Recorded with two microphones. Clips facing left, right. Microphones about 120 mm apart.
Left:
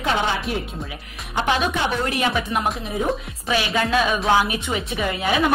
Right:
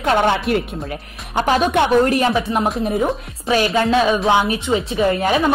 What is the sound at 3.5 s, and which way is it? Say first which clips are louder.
Speech: right 5 dB; 40° right (ahead or behind).